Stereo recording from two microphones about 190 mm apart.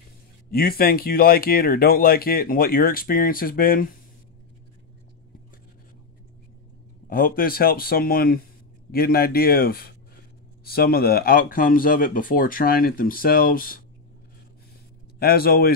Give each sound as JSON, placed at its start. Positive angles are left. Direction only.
{"t": 0.5, "sound": "speech", "side_deg": 50}
{"t": 7.1, "sound": "speech", "side_deg": 50}
{"t": 15.1, "sound": "speech", "side_deg": 55}